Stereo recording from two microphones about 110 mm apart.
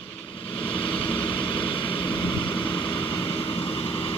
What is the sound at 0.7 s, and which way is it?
Vehicle, 50° left (ahead or behind).